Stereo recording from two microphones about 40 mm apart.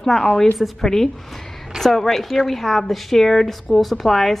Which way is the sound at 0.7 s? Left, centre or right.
Centre.